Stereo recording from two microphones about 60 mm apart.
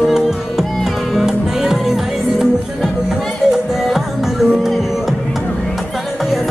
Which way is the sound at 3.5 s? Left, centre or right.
Centre.